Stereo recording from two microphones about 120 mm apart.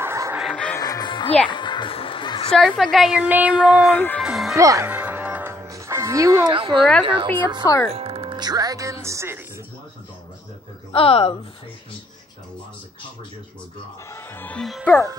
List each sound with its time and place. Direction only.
0.0 s music: 20° right (ahead or behind)
0.4 s music: 5° left (ahead or behind)
0.7 s music: 30° left (ahead or behind)
2.5 s a woman's voice: 5° left (ahead or behind)
3.8 s music: 15° left (ahead or behind)
4.2 s music: 5° right (ahead or behind)
4.6 s speech: 25° right (ahead or behind)
4.8 s music: 10° right (ahead or behind)
5.5 s music: 25° right (ahead or behind)
6.5 s a woman's voice: 45° right (ahead or behind)
7.9 s speech: 55° right (ahead or behind); by 9.4 s 25° right (ahead or behind)
10.9 s a woman's voice: 55° left (ahead or behind)
14.1 s music: 15° left (ahead or behind)